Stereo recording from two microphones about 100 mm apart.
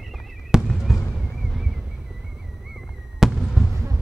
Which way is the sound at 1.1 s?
Centre (ahead or behind).